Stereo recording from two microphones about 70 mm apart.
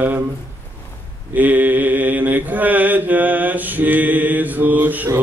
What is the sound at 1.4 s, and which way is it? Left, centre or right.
Mantra, right.